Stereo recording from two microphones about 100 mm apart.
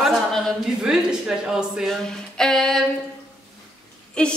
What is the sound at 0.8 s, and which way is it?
A woman's voice, 5° right (ahead or behind).